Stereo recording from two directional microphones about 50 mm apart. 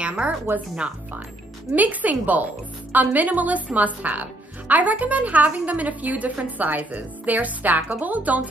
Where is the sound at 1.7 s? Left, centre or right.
Right.